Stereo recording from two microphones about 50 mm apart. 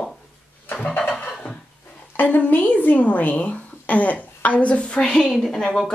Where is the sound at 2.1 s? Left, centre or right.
Left; by 5.2 s centre.